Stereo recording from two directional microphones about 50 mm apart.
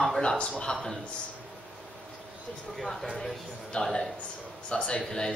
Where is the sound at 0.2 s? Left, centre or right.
Centre.